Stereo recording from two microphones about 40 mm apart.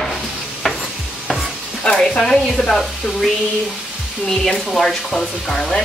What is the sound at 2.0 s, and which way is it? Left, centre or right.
Speech, centre.